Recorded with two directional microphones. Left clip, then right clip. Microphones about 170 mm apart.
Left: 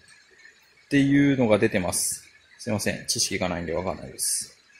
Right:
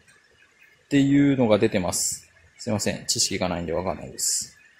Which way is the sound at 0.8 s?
10° right (ahead or behind).